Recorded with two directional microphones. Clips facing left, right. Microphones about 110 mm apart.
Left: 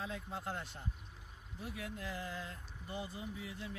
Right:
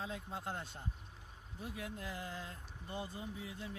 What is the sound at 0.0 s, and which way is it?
Speech, 25° right (ahead or behind).